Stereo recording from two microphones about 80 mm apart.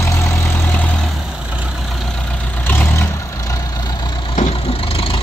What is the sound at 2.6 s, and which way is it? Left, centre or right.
Vehicle, left.